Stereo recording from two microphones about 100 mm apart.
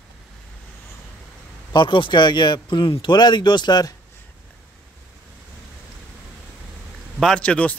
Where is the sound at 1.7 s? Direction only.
55° left (ahead or behind).